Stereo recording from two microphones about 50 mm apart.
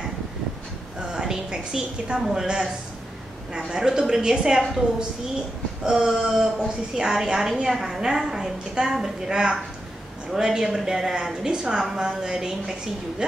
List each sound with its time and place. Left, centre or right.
0.9 s a woman's voice: centre
5.9 s a woman's voice: centre